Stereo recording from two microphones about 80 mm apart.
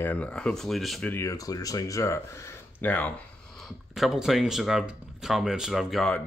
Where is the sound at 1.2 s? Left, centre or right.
Left.